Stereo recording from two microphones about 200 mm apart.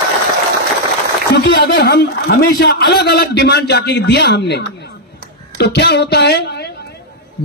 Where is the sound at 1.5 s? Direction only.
55° left (ahead or behind).